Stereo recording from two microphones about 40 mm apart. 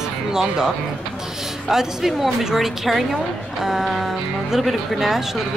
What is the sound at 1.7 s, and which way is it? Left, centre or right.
Speech, centre.